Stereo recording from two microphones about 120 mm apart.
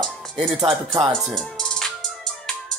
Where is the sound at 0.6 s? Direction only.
45° right (ahead or behind).